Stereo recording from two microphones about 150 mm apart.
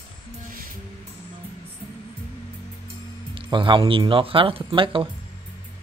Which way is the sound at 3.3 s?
35° right (ahead or behind).